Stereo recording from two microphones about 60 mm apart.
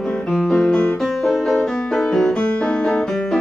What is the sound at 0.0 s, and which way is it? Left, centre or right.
Music, centre.